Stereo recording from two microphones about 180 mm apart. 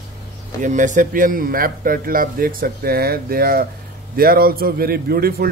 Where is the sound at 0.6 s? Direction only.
45° right (ahead or behind).